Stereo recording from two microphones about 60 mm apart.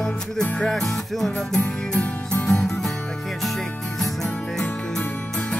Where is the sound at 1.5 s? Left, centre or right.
Left.